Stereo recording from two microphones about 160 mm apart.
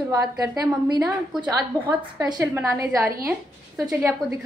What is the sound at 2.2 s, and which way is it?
Speech, 15° right (ahead or behind).